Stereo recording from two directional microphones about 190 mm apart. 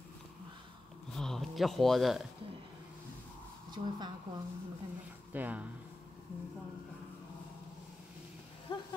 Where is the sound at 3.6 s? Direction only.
20° right (ahead or behind).